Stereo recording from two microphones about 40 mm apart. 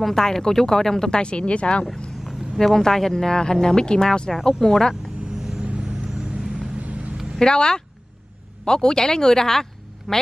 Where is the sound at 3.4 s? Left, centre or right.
Centre.